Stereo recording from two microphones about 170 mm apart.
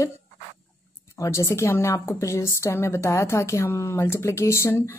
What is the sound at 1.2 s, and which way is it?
A woman's voice, 15° left (ahead or behind).